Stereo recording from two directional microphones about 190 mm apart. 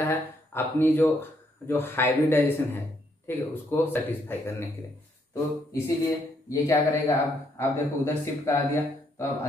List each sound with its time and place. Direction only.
0.0 s a man's voice: 10° left (ahead or behind)